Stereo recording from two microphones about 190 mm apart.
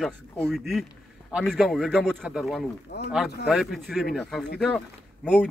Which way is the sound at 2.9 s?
60° left (ahead or behind).